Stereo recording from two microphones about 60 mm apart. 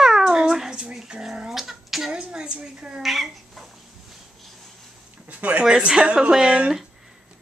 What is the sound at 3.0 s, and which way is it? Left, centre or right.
Speech, centre.